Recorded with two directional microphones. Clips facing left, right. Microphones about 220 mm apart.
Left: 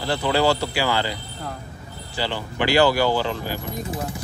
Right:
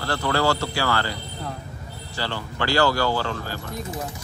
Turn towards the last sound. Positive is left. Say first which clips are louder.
# left 3 dB
turn(degrees=15)  # may be behind; listen again after turning